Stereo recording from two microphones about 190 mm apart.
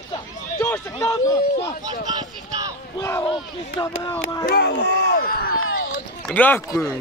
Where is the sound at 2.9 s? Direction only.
15° left (ahead or behind).